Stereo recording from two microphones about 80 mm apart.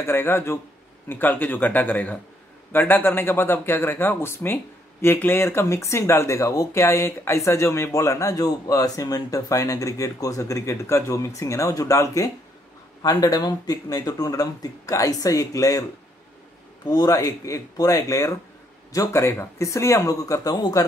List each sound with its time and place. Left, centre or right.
0.0 s speech: left
16.9 s speech: left